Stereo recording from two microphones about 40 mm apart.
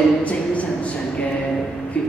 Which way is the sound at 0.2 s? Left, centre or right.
Left.